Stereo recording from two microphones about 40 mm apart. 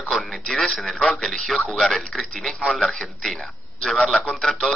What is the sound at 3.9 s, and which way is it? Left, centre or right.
Speech, centre.